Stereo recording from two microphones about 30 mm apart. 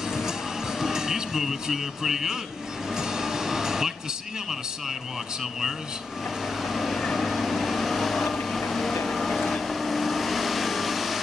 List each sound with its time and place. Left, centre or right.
0.1 s music: centre
2.9 s vehicle: centre
6.6 s vehicle: centre